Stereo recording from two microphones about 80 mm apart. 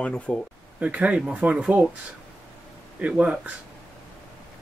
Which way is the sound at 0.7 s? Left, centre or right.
Centre.